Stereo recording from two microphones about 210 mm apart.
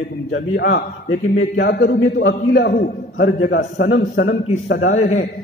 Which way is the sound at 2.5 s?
45° left (ahead or behind).